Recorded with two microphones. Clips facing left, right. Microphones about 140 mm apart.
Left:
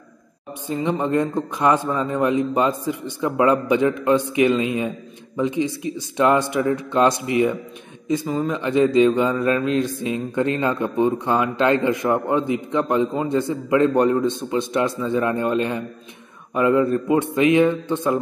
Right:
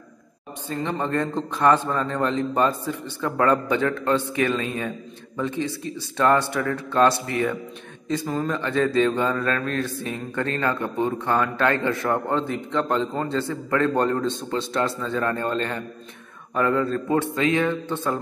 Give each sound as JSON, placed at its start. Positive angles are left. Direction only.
{"t": 0.7, "sound": "a man's voice", "side_deg": 15}